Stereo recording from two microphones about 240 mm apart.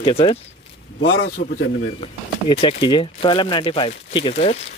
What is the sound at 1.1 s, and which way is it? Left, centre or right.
Speech, left.